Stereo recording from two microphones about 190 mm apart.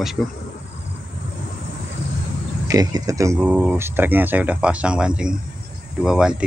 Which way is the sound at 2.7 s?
20° right (ahead or behind).